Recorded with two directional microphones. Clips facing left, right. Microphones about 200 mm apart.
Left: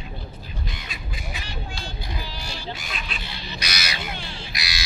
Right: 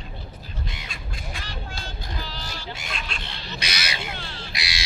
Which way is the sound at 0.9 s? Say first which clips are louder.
Left 1 dB; 5° left (ahead or behind).